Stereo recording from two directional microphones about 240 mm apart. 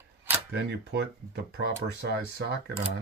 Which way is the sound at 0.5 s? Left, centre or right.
Right.